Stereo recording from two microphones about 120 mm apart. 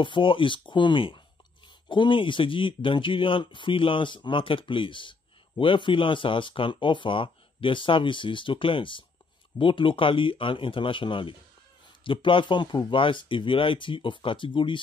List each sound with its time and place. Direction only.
0.0 s speech: 45° left (ahead or behind)